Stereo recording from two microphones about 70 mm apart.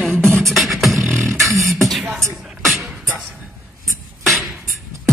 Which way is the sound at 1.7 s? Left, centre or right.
Centre.